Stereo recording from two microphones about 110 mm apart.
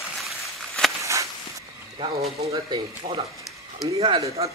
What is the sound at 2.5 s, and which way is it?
Speech, 50° right (ahead or behind).